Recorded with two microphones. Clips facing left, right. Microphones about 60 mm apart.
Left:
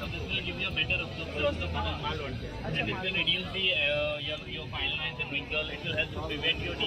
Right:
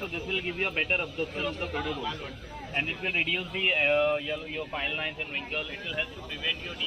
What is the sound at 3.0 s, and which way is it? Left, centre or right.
Speech, right.